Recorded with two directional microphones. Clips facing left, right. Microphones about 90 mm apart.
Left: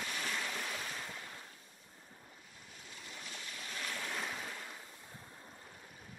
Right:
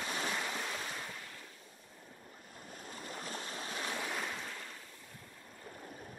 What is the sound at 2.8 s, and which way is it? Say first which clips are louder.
Stream: right 7 dB; 45° right (ahead or behind).